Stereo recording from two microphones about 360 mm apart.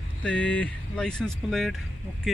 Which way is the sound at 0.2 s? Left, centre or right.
Centre.